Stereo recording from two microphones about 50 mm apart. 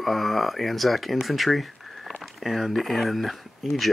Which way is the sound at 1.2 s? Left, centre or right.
Centre.